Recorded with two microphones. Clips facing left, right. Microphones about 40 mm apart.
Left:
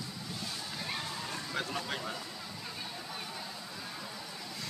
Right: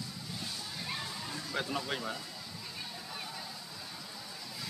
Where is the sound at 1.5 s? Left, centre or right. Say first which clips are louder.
Right 2 dB; centre.